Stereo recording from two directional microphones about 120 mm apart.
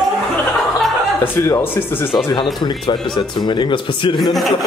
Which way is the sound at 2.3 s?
40° left (ahead or behind).